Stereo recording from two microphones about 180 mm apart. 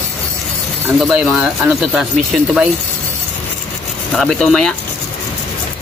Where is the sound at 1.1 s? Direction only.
5° right (ahead or behind).